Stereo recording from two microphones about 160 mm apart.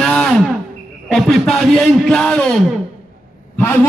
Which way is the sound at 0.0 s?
5° left (ahead or behind).